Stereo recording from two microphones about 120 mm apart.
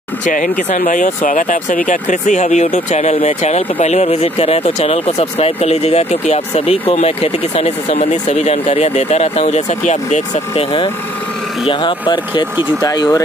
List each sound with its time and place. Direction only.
0.2 s speech: 90° left; by 10.6 s 75° left (ahead or behind)
11.6 s speech: 40° left (ahead or behind)